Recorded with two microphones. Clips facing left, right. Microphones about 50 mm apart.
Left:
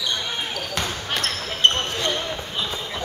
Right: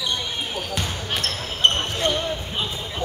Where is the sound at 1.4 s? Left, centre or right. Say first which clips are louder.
Even; centre.